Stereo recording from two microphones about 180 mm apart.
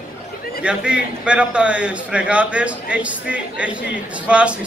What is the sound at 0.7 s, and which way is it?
A man's voice, 5° right (ahead or behind).